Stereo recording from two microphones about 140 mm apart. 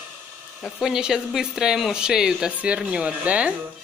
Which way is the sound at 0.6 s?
5° right (ahead or behind).